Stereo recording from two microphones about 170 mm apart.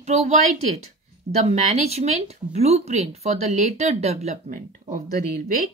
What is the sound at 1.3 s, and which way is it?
Speech, 40° right (ahead or behind).